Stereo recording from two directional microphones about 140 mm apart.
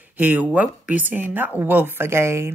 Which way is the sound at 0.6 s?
10° right (ahead or behind).